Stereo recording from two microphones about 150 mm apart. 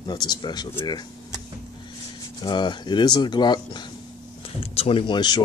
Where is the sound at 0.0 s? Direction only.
30° left (ahead or behind).